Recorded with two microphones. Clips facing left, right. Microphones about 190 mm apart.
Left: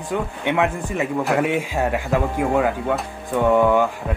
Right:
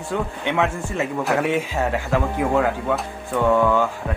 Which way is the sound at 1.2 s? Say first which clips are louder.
Even; centre (ahead or behind).